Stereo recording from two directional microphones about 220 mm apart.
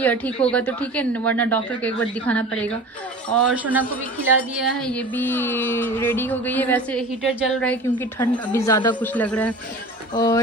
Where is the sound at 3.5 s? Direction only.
5° right (ahead or behind).